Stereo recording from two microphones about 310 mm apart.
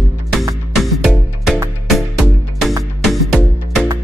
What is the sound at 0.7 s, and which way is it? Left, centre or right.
Music, centre.